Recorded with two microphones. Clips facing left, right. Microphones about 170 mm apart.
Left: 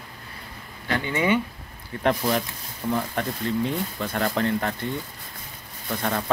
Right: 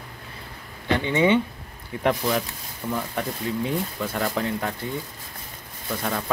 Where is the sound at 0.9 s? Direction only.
20° right (ahead or behind).